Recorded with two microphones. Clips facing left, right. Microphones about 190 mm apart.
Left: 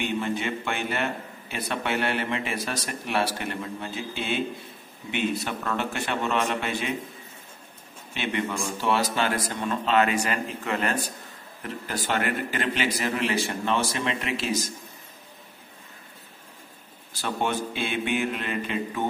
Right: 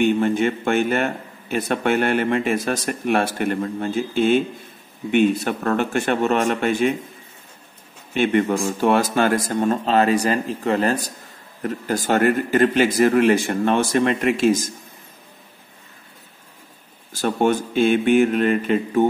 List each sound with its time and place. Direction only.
0.0 s a man's voice: 50° right (ahead or behind)
8.1 s a man's voice: 50° right (ahead or behind)
17.1 s a man's voice: 45° right (ahead or behind)